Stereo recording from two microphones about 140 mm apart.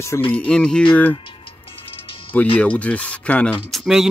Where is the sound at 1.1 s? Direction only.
40° left (ahead or behind).